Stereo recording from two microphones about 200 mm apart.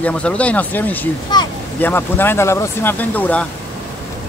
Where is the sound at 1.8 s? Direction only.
10° left (ahead or behind).